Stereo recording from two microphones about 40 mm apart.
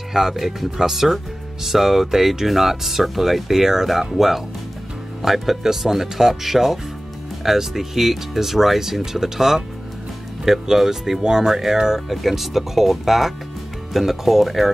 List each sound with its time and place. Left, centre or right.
0.1 s speech: centre